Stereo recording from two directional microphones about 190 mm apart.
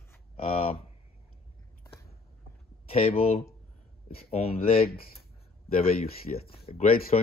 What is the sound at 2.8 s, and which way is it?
Speech, 30° left (ahead or behind).